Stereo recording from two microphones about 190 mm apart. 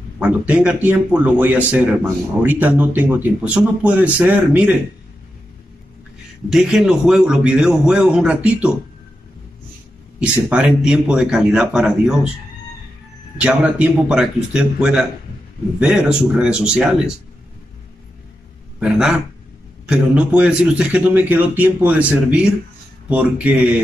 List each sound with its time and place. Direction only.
0.2 s a man's voice: 5° right (ahead or behind)
6.5 s a man's voice: 5° right (ahead or behind)
10.2 s a man's voice: 5° right (ahead or behind)
13.4 s a man's voice: 5° right (ahead or behind)
18.8 s a man's voice: 5° right (ahead or behind)